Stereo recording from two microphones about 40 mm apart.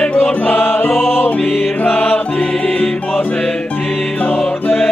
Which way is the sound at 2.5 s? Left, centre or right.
Centre.